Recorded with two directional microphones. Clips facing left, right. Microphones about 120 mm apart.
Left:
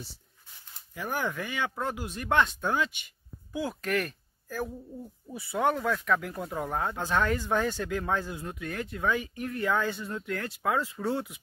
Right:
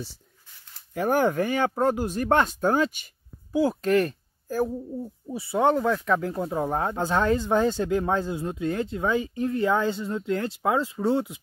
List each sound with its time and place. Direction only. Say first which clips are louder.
0.9 s speech: right 10 dB; 45° right (ahead or behind); by 11.3 s 25° right (ahead or behind)